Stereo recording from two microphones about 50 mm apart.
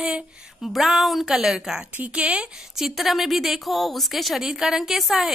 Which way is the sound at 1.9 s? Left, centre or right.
Right.